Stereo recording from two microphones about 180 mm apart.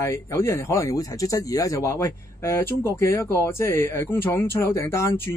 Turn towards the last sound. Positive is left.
turn(degrees=15)  # may be behind; listen again after turning